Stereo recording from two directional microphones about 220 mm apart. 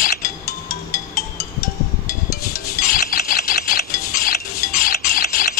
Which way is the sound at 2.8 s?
40° left (ahead or behind).